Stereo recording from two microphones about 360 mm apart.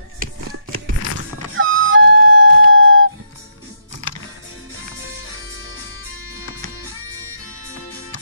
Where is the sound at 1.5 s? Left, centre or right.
Right.